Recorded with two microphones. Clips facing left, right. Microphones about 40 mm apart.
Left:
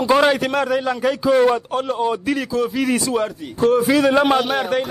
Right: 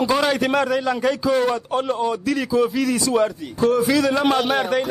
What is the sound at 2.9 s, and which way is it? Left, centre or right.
A man's voice, left.